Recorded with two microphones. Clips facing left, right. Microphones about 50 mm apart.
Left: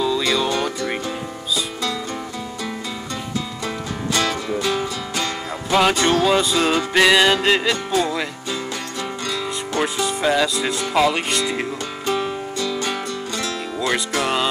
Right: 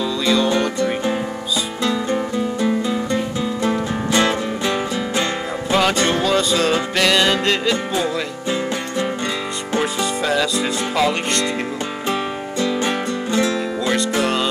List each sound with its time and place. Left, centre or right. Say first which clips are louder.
3.6 s music: right 6 dB; right
5.8 s music: left 1 dB; centre
9.8 s music: right 1 dB; centre
10.2 s speech: left 1 dB; centre
12.1 s music: left 2 dB; right
14.2 s music: right 1 dB; centre